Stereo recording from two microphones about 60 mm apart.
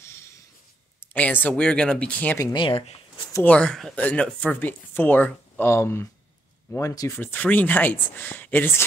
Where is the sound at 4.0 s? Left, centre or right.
Left.